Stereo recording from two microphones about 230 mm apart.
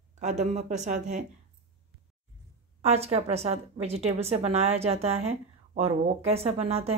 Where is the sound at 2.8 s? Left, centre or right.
Right.